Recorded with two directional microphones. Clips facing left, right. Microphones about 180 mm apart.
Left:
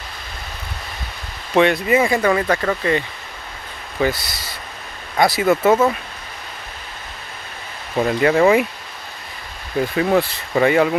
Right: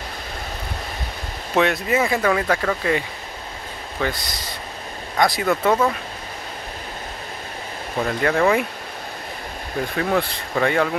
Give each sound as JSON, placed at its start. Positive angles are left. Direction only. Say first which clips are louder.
{"t": 1.5, "sound": "speech", "louder": "left 4 dB", "side_deg": 0}
{"t": 4.0, "sound": "speech", "louder": "left 5 dB", "side_deg": 5}
{"t": 8.0, "sound": "speech", "louder": "left 5 dB", "side_deg": 10}
{"t": 9.9, "sound": "speech", "louder": "left 4 dB", "side_deg": 5}